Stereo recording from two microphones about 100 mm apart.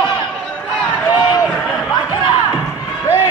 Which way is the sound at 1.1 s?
50° left (ahead or behind).